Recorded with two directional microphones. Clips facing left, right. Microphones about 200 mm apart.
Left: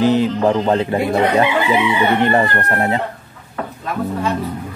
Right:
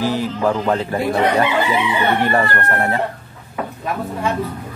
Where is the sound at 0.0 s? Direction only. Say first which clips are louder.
Left 5 dB; 20° left (ahead or behind).